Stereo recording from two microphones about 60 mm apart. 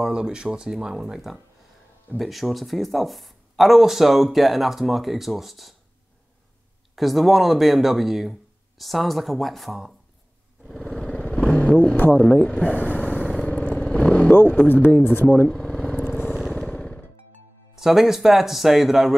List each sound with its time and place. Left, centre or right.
0.0 s speech: centre
7.0 s speech: centre
10.7 s vehicle: centre
12.2 s speech: centre
12.7 s vehicle: left
14.3 s speech: left
15.4 s vehicle: centre
16.1 s vehicle: centre
16.6 s music: left
17.7 s speech: centre